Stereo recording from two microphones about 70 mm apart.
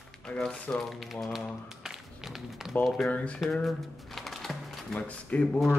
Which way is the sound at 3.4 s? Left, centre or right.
Centre.